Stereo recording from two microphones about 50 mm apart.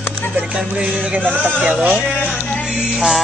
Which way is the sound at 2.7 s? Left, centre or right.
Centre.